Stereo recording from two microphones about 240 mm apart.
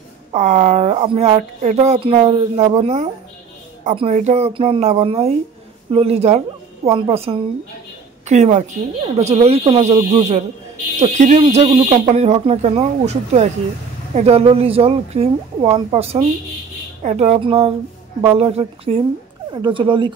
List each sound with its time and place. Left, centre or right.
0.3 s a woman's voice: right